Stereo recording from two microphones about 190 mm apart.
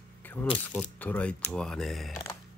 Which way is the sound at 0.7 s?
10° left (ahead or behind).